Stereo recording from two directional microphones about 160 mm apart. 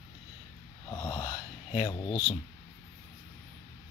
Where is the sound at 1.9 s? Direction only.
25° left (ahead or behind).